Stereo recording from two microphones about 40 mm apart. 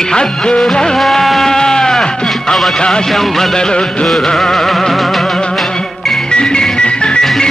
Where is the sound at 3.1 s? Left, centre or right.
Centre.